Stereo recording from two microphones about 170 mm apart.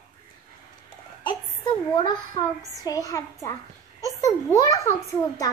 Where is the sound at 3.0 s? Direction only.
20° left (ahead or behind).